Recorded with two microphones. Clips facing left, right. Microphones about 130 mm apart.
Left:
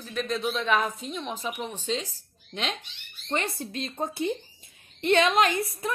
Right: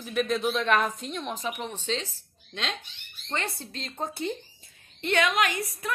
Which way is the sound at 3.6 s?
20° left (ahead or behind).